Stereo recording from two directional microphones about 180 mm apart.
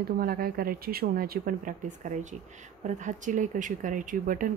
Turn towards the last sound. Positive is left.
turn(degrees=-50)  # may be behind; listen again after turning